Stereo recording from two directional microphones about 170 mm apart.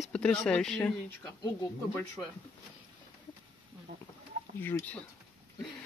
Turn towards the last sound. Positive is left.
turn(degrees=10)  # may be behind; listen again after turning